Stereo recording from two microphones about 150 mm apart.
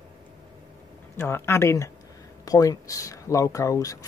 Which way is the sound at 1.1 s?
15° left (ahead or behind).